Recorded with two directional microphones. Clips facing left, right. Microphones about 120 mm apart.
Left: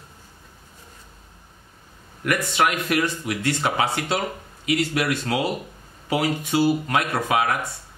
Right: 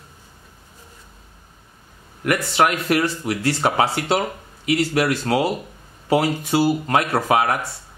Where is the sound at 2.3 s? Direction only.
35° right (ahead or behind).